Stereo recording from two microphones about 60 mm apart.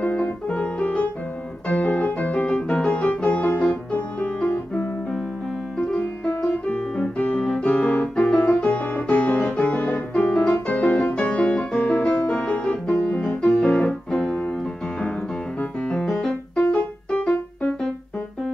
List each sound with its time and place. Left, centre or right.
0.0 s piano: left
1.7 s music: left
5.9 s music: centre
10.1 s music: centre
10.5 s music: left
12.4 s piano: centre
15.9 s keyboard: centre
17.1 s music: centre